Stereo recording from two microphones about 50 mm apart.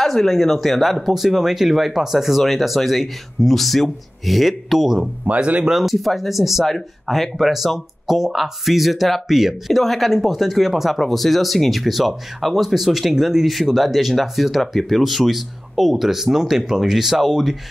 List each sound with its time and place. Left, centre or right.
0.0 s speech: centre
5.2 s speech: right
5.7 s speech: centre